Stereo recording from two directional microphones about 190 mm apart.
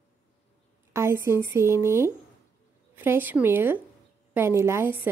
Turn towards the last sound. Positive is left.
turn(degrees=-15)  # may be behind; listen again after turning